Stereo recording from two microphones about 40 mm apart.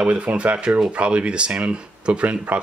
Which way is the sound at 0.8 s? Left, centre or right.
Right.